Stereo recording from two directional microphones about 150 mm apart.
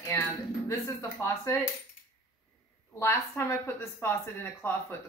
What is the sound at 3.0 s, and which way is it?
Speech, 15° left (ahead or behind).